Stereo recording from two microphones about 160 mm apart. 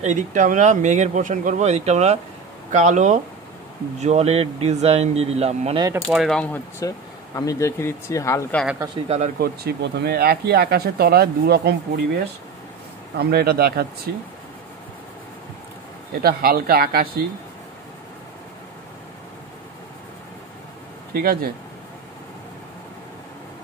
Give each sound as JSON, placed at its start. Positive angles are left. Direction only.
{"t": 0.0, "sound": "speech", "side_deg": -50}
{"t": 5.8, "sound": "speech", "side_deg": -20}
{"t": 6.1, "sound": "speech", "side_deg": 0}
{"t": 6.8, "sound": "speech", "side_deg": 20}
{"t": 8.9, "sound": "speech", "side_deg": -45}
{"t": 9.4, "sound": "speech", "side_deg": -80}
{"t": 13.2, "sound": "speech", "side_deg": -75}
{"t": 16.2, "sound": "speech", "side_deg": -70}
{"t": 21.1, "sound": "speech", "side_deg": -70}